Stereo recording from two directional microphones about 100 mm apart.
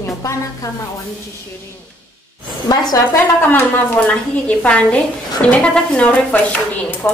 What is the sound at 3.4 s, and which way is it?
A woman's voice, 20° left (ahead or behind).